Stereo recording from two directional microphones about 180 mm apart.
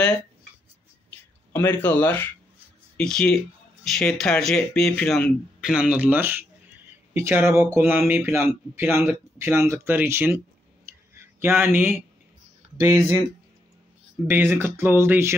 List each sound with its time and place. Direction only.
1.5 s speech: 10° left (ahead or behind); by 13.2 s 15° right (ahead or behind)
14.2 s speech: 15° right (ahead or behind)